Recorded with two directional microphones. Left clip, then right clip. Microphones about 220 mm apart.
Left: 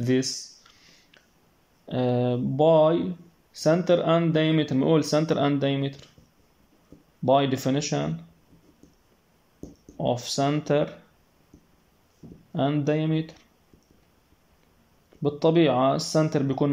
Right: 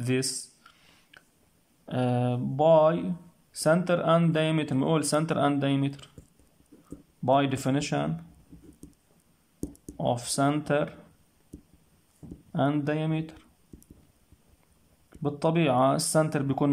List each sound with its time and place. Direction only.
0.0 s speech: 5° right (ahead or behind)
1.9 s speech: 5° right (ahead or behind)
7.2 s speech: 5° right (ahead or behind)
9.9 s speech: 10° right (ahead or behind)
12.5 s speech: 10° right (ahead or behind)
15.2 s speech: 10° right (ahead or behind)